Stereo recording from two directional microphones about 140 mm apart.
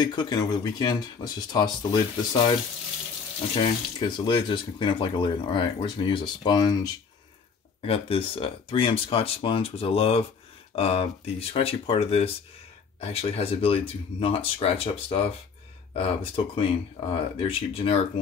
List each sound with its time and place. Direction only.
0.0 s speech: 35° left (ahead or behind)
3.5 s speech: 35° left (ahead or behind)
7.8 s speech: 40° left (ahead or behind)